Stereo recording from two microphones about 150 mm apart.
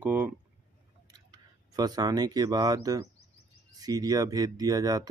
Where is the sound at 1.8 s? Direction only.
25° right (ahead or behind).